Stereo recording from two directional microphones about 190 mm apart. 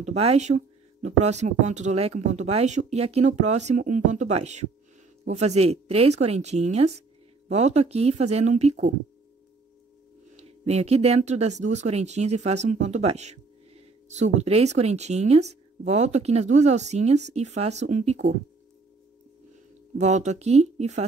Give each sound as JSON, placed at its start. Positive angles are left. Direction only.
{"t": 0.0, "sound": "speech", "side_deg": -35}
{"t": 10.3, "sound": "speech", "side_deg": -35}
{"t": 20.0, "sound": "speech", "side_deg": -35}